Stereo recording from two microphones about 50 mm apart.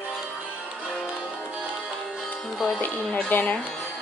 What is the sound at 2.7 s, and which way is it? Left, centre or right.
Speech, left.